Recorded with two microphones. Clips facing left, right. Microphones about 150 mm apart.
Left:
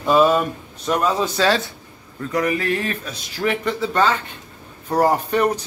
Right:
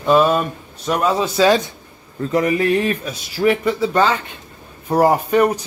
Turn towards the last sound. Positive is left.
turn(degrees=-10)  # may be behind; listen again after turning